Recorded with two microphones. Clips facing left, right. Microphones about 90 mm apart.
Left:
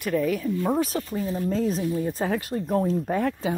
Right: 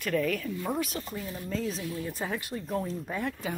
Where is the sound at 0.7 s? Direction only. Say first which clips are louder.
Left 6 dB; 30° left (ahead or behind); by 3.4 s 50° left (ahead or behind).